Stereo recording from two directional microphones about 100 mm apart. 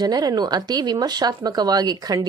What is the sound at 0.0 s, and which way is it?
A woman's voice, 40° right (ahead or behind).